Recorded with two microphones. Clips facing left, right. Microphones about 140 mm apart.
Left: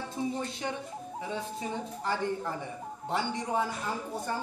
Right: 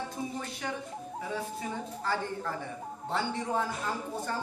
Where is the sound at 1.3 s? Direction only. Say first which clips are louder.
Left 1 dB; 20° left (ahead or behind).